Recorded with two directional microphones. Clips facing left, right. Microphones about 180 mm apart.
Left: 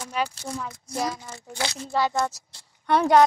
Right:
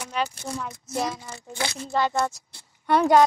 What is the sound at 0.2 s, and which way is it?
Speech, 10° left (ahead or behind).